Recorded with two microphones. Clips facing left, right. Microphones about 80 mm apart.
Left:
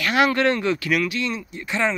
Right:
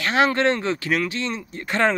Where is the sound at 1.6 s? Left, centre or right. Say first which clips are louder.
Right 3 dB; right.